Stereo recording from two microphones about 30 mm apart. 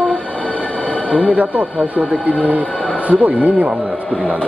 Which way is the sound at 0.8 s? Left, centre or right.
Left.